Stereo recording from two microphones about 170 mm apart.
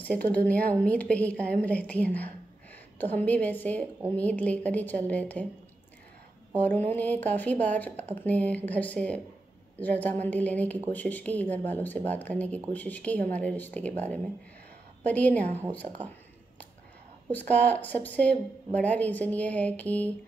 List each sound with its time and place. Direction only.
0.0 s a woman's voice: 10° left (ahead or behind)
6.5 s mantra: 10° left (ahead or behind)
6.9 s a woman's voice: 10° left (ahead or behind)
15.0 s a woman's voice: 10° left (ahead or behind)
17.3 s a woman's voice: 10° left (ahead or behind)